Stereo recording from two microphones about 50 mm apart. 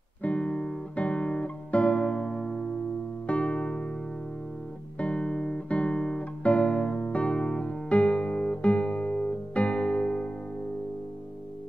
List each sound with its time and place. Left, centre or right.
0.2 s guitar: left
3.3 s music: left
4.9 s guitar: left